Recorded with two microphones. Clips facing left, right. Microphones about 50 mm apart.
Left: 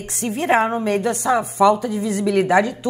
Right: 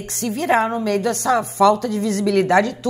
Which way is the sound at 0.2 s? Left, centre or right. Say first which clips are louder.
Even; left.